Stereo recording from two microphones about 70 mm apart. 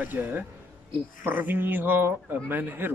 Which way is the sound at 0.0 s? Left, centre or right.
Right.